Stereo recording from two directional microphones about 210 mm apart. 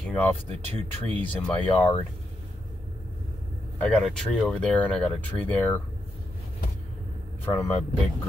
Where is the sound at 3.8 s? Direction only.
5° left (ahead or behind).